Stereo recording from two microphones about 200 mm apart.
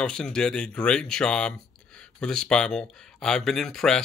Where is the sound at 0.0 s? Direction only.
5° left (ahead or behind).